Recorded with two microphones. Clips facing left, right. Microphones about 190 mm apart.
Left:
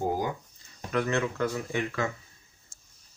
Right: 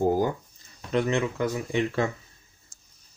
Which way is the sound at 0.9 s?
20° right (ahead or behind).